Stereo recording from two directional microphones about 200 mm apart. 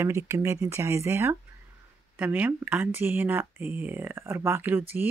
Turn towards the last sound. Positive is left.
turn(degrees=-10)  # may be behind; listen again after turning